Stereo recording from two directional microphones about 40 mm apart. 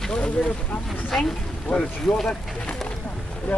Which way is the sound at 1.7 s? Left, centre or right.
Left.